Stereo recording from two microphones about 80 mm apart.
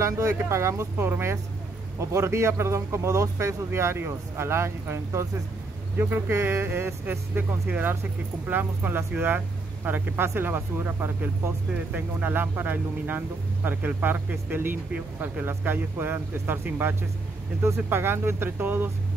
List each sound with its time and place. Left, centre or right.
0.0 s speech: right